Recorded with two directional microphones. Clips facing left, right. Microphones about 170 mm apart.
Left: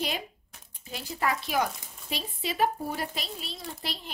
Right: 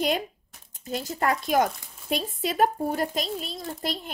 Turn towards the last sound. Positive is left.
turn(degrees=-45)  # may be behind; listen again after turning